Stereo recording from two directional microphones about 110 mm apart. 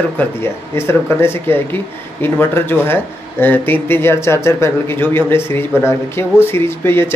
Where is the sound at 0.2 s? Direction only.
20° left (ahead or behind).